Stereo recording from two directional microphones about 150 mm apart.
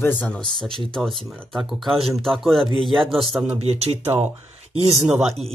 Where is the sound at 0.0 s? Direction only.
10° left (ahead or behind).